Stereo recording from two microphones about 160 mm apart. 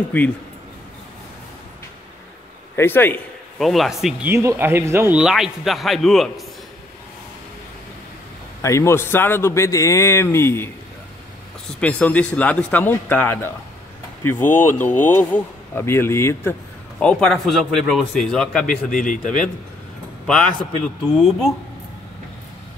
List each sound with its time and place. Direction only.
0.1 s speech: 10° left (ahead or behind)
2.7 s a man's voice: 15° left (ahead or behind)
3.5 s a man's voice: centre (ahead or behind)
4.3 s speech: 15° right (ahead or behind)
5.2 s a man's voice: centre (ahead or behind)
8.6 s speech: 15° left (ahead or behind)
11.8 s speech: 10° left (ahead or behind)
17.0 s a man's voice: 5° left (ahead or behind)
18.9 s speech: 55° left (ahead or behind)
20.2 s a man's voice: 5° left (ahead or behind)